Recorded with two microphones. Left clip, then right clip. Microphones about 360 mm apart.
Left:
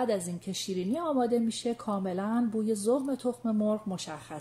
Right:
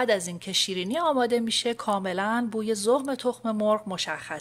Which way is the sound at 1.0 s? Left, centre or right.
Right.